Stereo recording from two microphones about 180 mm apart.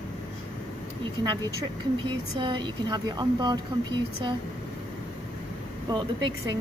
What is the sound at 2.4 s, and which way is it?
A woman's voice, 25° right (ahead or behind).